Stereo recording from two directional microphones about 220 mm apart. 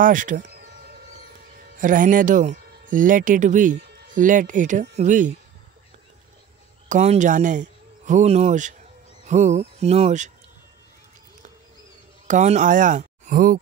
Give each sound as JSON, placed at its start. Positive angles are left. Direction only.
{"t": 0.0, "sound": "speech", "side_deg": -35}
{"t": 1.8, "sound": "speech", "side_deg": -35}
{"t": 6.9, "sound": "a man's voice", "side_deg": -35}
{"t": 12.3, "sound": "speech", "side_deg": -35}